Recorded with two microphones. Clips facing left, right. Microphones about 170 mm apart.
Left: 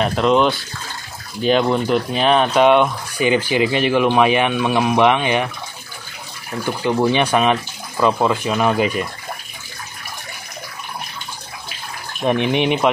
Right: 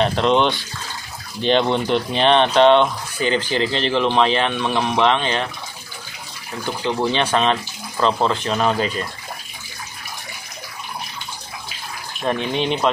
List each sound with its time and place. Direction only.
0.0 s speech: 5° left (ahead or behind)
6.6 s speech: 10° left (ahead or behind)
12.2 s speech: 15° left (ahead or behind)